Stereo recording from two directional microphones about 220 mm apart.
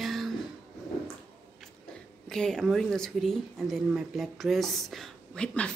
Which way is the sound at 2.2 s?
Centre (ahead or behind).